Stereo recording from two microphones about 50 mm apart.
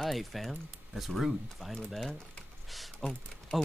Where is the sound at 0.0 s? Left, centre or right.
Centre.